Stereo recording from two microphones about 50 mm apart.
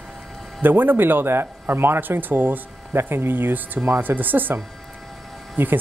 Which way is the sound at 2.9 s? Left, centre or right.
Right.